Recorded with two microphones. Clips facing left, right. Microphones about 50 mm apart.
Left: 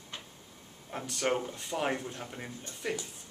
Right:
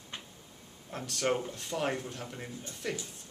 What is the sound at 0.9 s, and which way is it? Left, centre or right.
Speech, centre.